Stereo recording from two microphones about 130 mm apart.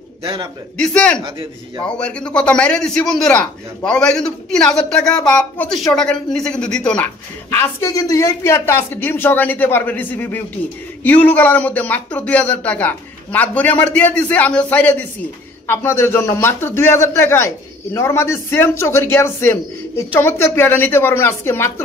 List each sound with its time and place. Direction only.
0.2 s a man's voice: 45° right (ahead or behind)
0.7 s a man's voice: 5° left (ahead or behind)
7.5 s a man's voice: 25° left (ahead or behind)